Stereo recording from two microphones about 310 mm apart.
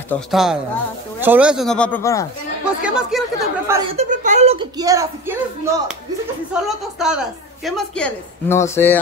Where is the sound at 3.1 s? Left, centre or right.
Centre.